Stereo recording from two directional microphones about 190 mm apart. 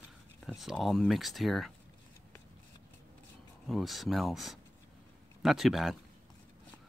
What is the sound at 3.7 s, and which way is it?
Speech, centre (ahead or behind).